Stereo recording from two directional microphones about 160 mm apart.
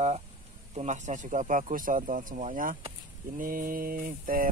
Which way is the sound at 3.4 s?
60° right (ahead or behind).